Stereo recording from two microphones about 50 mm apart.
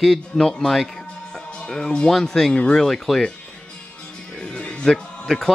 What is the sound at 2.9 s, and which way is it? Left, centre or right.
Speech, centre.